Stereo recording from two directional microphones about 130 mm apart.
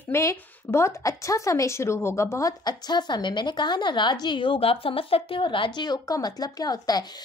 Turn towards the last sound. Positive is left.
turn(degrees=30)  # may be behind; listen again after turning